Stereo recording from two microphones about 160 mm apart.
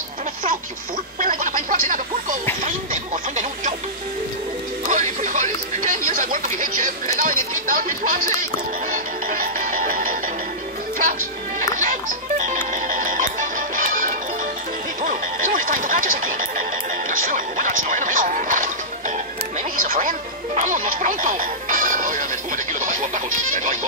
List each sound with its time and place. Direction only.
1.2 s a sound: 55° right (ahead or behind)
4.8 s music: 50° right (ahead or behind)
11.7 s music: 55° right (ahead or behind)
15.0 s a sound: 55° right (ahead or behind)
17.1 s music: 55° right (ahead or behind)
22.7 s goat: 55° right (ahead or behind)